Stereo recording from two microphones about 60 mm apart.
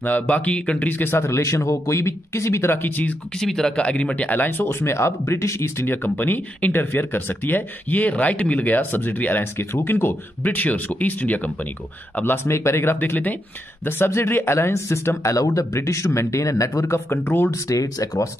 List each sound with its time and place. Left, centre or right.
0.0 s speech: left
3.3 s speech: centre; by 4.6 s left
4.6 s speech: left
5.9 s speech: left
9.4 s speech: left
12.4 s speech: left
15.3 s speech: left
17.1 s speech: left
17.5 s speech: left